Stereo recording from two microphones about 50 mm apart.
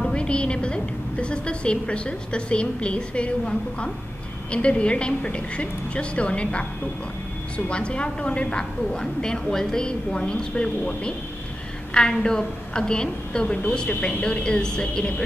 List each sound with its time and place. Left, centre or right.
0.1 s a woman's voice: left
11.9 s a woman's voice: centre